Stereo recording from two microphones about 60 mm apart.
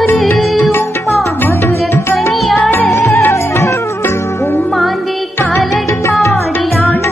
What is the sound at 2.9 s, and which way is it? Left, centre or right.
Music, left.